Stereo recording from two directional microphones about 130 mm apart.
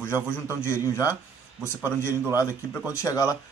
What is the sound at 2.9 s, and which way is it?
Speech, 25° left (ahead or behind).